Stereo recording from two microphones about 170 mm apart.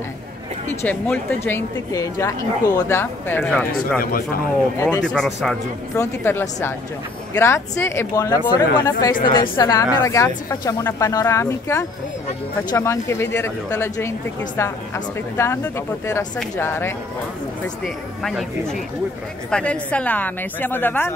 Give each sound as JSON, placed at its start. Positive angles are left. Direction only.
{"t": 0.8, "sound": "a woman's voice", "side_deg": 10}
{"t": 4.0, "sound": "speech", "side_deg": 60}
{"t": 4.7, "sound": "a woman's voice", "side_deg": 15}
{"t": 5.0, "sound": "speech", "side_deg": 5}
{"t": 5.9, "sound": "a woman's voice", "side_deg": 15}
{"t": 17.8, "sound": "a woman's voice", "side_deg": 0}